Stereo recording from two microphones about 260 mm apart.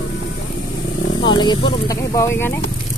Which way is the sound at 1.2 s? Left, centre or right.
Centre.